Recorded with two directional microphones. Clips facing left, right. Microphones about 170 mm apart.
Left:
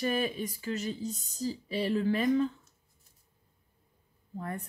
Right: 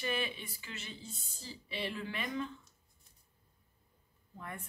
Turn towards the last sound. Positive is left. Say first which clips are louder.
# left 8 dB
turn(degrees=35)  # may be behind; listen again after turning